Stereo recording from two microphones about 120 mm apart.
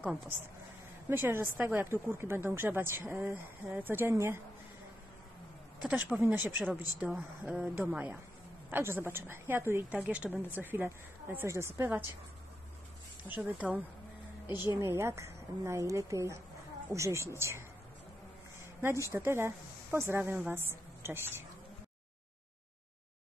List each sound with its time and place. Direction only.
0.0 s speech: 10° right (ahead or behind)
1.0 s speech: 20° right (ahead or behind)
5.8 s speech: 10° right (ahead or behind)
9.9 s speech: 10° right (ahead or behind)
13.4 s speech: 10° right (ahead or behind)
14.8 s speech: 20° right (ahead or behind)
19.0 s speech: 20° right (ahead or behind)